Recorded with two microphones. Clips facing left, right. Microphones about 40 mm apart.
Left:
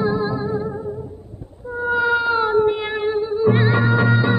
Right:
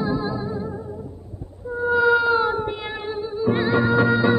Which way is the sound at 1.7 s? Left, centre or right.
Left.